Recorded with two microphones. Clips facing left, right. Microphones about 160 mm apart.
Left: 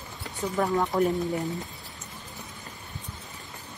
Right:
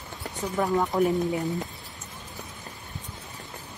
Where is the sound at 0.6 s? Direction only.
Centre (ahead or behind).